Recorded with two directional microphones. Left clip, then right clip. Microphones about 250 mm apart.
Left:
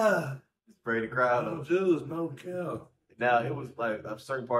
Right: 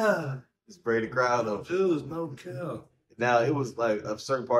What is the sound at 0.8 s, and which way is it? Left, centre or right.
Speech, right.